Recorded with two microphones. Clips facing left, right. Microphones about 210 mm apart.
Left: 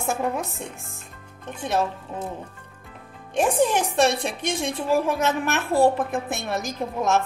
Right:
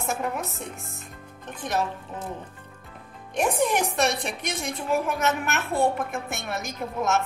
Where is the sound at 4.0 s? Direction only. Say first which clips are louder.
Left 4 dB; 30° left (ahead or behind).